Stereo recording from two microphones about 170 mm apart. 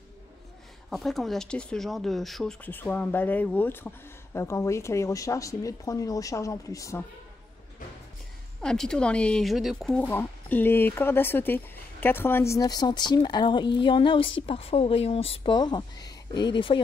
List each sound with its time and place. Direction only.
0.8 s speech: centre (ahead or behind); by 7.1 s 20° left (ahead or behind)
8.5 s speech: 5° left (ahead or behind); by 16.8 s 30° left (ahead or behind)